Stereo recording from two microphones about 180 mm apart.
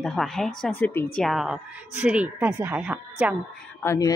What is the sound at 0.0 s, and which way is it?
A woman's voice, centre (ahead or behind).